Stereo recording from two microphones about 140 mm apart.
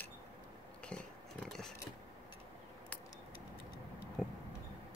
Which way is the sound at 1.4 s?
5° left (ahead or behind).